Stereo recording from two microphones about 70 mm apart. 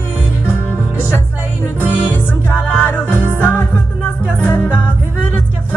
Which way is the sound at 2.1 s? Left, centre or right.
Left.